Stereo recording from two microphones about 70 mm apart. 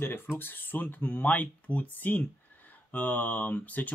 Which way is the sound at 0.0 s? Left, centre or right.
Left.